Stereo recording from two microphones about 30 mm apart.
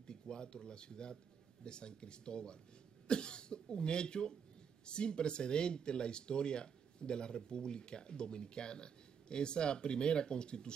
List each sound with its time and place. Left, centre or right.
0.0 s speech: left